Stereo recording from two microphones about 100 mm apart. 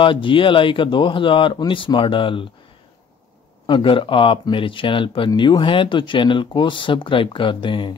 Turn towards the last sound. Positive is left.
turn(degrees=55)  # may be behind; listen again after turning